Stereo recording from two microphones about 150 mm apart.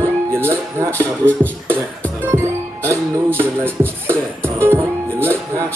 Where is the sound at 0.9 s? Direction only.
10° left (ahead or behind).